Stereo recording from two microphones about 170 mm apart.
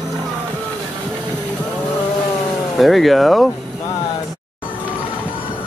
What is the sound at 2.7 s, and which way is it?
Speech, centre (ahead or behind).